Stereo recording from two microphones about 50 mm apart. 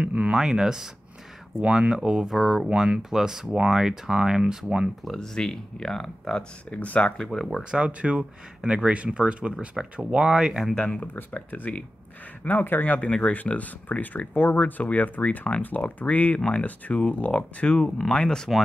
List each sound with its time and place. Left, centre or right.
0.0 s speech: right
0.3 s speech: centre
2.2 s speech: centre
5.0 s speech: centre
6.7 s speech: left
7.7 s speech: right
10.7 s speech: centre
11.1 s speech: left
16.3 s speech: centre